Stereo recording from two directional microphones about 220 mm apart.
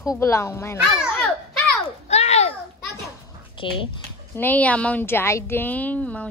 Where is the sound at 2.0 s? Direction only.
30° left (ahead or behind).